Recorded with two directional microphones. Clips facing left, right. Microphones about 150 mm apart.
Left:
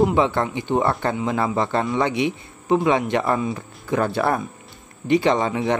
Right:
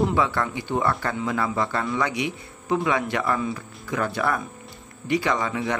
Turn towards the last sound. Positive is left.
turn(degrees=25)  # may be behind; listen again after turning